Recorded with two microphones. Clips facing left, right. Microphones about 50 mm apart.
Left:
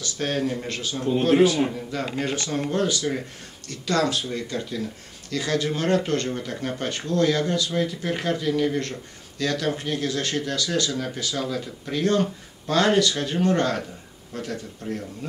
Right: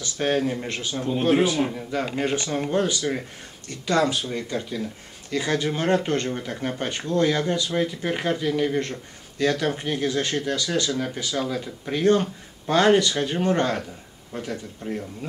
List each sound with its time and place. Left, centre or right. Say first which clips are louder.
0.0 s speech: right 3 dB; centre
0.9 s speech: left 3 dB; centre
1.2 s speech: left 2 dB; centre